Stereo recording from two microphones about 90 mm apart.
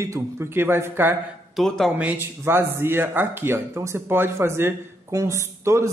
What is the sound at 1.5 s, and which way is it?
Speech, 5° left (ahead or behind).